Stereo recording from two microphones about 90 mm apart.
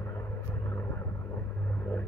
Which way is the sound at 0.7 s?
25° left (ahead or behind).